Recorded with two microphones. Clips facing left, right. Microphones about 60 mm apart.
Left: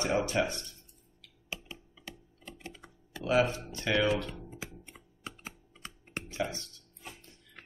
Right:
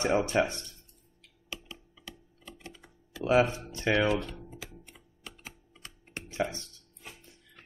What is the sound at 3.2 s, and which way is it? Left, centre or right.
Speech, right.